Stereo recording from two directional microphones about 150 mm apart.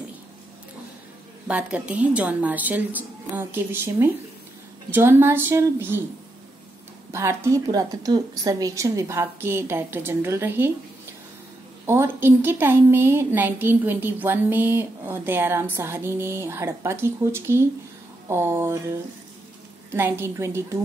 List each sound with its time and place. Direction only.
1.5 s a woman's voice: 10° right (ahead or behind)
7.1 s a woman's voice: 20° right (ahead or behind)
11.8 s a woman's voice: 15° right (ahead or behind)